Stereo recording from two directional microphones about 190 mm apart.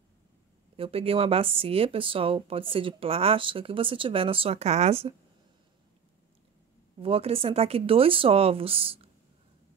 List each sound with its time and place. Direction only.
0.7 s speech: 30° right (ahead or behind)
7.0 s speech: 30° right (ahead or behind)